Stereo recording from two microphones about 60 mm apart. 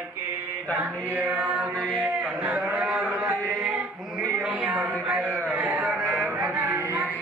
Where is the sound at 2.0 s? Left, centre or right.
Right.